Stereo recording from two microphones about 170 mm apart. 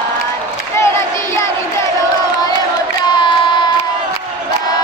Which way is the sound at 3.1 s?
25° left (ahead or behind).